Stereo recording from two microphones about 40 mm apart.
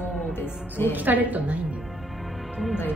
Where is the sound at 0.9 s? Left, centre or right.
Right.